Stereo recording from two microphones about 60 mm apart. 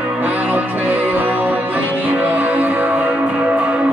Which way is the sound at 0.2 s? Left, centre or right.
Right.